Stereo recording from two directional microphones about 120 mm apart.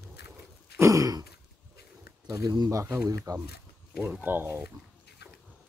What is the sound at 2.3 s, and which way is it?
Speech, 30° right (ahead or behind).